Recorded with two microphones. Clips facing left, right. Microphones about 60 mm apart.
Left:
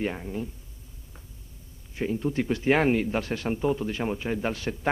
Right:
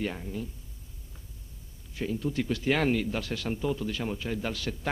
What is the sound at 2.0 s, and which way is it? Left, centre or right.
A man's voice, left.